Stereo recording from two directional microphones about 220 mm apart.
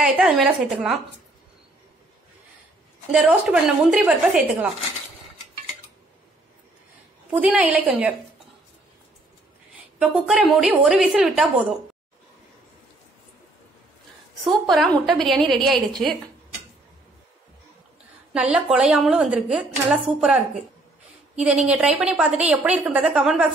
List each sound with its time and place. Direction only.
0.0 s a woman's voice: centre (ahead or behind)
3.1 s a woman's voice: 5° right (ahead or behind)
7.3 s a woman's voice: 5° right (ahead or behind)
9.9 s a woman's voice: 5° right (ahead or behind)
14.4 s a woman's voice: centre (ahead or behind)
18.3 s a woman's voice: 5° right (ahead or behind)
21.4 s a woman's voice: 5° right (ahead or behind)